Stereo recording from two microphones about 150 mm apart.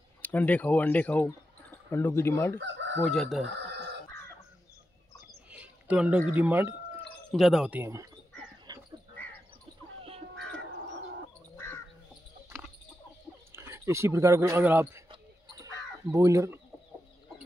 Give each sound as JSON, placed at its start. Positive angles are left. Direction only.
{"t": 0.2, "sound": "speech", "side_deg": 10}
{"t": 3.1, "sound": "speech", "side_deg": 0}
{"t": 5.5, "sound": "speech", "side_deg": -10}
{"t": 7.2, "sound": "speech", "side_deg": 0}
{"t": 7.8, "sound": "speech", "side_deg": -20}
{"t": 8.7, "sound": "dog", "side_deg": -25}
{"t": 11.5, "sound": "crow", "side_deg": 15}
{"t": 13.5, "sound": "speech", "side_deg": -15}
{"t": 15.0, "sound": "a sound", "side_deg": -25}